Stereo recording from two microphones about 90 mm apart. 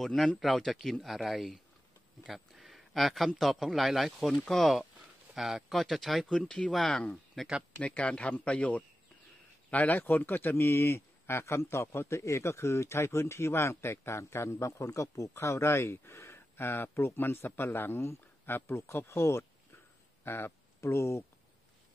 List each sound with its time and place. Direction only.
0.0 s speech: 5° left (ahead or behind)
2.2 s a sound: centre (ahead or behind)
3.3 s speech: centre (ahead or behind); by 21.2 s 30° left (ahead or behind)